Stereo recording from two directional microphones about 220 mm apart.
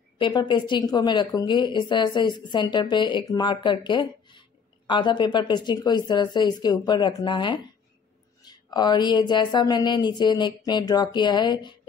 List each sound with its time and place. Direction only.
0.2 s a woman's voice: 20° left (ahead or behind)